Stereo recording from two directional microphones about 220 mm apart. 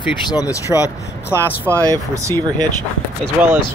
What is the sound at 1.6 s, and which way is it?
Speech, 15° right (ahead or behind).